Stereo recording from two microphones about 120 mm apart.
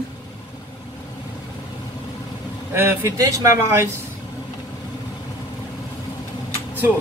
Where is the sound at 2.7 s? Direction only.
20° right (ahead or behind).